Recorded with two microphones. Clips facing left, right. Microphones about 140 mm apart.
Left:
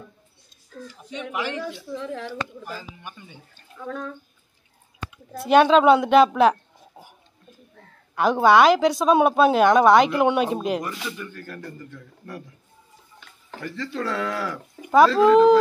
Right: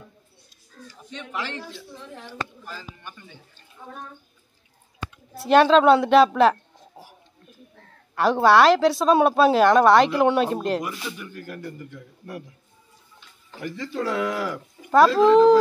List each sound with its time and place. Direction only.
1.3 s speech: 15° left (ahead or behind)
2.0 s speech: 90° left
2.6 s speech: 15° left (ahead or behind)
3.7 s speech: 80° left
5.4 s speech: centre (ahead or behind)
11.1 s speech: 15° right (ahead or behind)
13.6 s speech: 15° right (ahead or behind)
15.1 s speech: centre (ahead or behind)